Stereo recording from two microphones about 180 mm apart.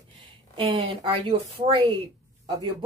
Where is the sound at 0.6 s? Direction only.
30° right (ahead or behind).